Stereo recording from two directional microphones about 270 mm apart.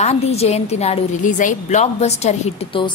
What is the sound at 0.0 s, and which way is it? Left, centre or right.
A woman's voice, left.